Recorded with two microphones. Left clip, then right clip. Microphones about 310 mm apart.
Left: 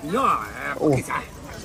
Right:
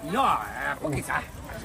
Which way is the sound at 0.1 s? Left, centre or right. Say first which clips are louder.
Left 3 dB; centre.